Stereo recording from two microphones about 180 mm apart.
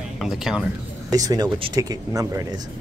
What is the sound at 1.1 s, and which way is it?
Speech, 20° right (ahead or behind).